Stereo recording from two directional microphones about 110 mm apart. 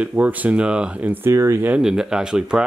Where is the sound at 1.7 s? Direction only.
5° right (ahead or behind).